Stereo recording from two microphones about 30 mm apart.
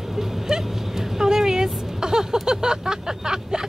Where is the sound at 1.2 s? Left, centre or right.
Centre.